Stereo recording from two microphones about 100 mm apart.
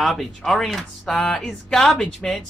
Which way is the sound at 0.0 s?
Centre (ahead or behind).